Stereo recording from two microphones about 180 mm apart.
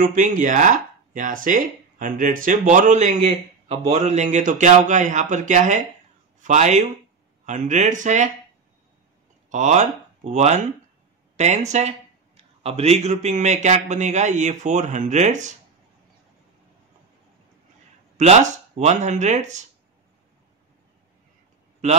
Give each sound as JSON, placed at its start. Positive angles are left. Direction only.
{"t": 0.0, "sound": "a man's voice", "side_deg": -45}
{"t": 9.5, "sound": "a man's voice", "side_deg": -40}
{"t": 18.1, "sound": "a man's voice", "side_deg": -40}